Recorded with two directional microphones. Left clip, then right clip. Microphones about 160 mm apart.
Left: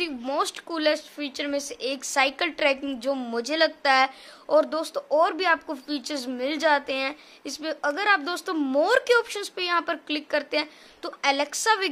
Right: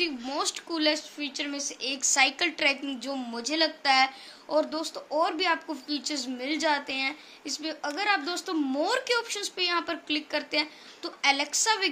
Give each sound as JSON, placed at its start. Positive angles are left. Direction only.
{"t": 0.0, "sound": "a woman's voice", "side_deg": 55}